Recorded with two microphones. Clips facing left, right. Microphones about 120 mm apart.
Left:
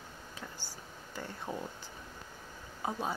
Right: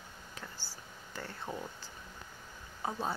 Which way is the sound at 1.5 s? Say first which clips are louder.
Left 2 dB; 20° left (ahead or behind).